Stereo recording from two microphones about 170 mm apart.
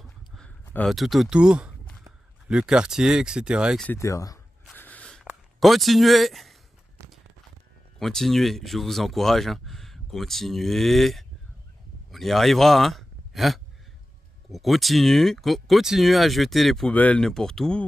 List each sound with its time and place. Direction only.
0.8 s speech: centre (ahead or behind)
3.8 s speech: 15° left (ahead or behind)
4.7 s a sound: 10° left (ahead or behind)
8.0 s speech: centre (ahead or behind)